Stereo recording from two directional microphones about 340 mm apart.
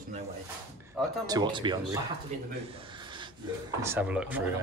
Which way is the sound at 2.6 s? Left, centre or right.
Centre.